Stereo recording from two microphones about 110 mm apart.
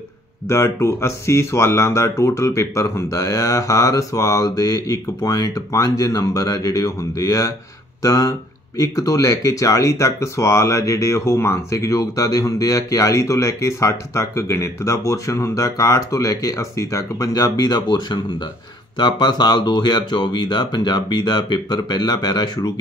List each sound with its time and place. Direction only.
0.5 s speech: 25° left (ahead or behind)